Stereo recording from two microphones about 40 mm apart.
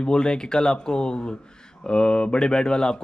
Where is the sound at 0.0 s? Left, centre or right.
Left.